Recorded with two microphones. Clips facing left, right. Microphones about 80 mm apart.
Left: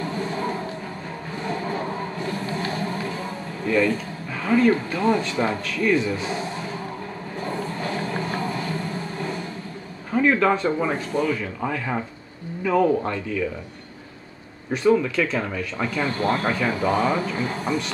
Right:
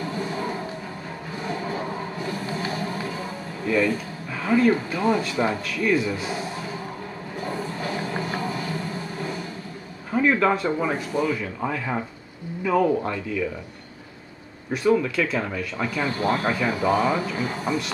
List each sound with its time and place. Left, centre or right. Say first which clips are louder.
0.0 s music: left 1 dB; centre
1.4 s a sound: left 2 dB; centre
3.6 s speech: left 1 dB; centre
7.3 s a sound: left 1 dB; centre
10.1 s speech: left 1 dB; centre
14.7 s speech: left 2 dB; centre